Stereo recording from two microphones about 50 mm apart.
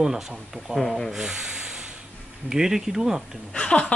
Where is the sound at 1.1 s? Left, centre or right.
Centre.